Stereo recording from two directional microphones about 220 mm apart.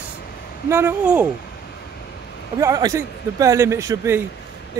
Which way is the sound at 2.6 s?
15° right (ahead or behind).